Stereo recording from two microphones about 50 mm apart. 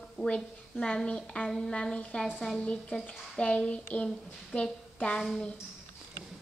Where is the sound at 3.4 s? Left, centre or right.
Left.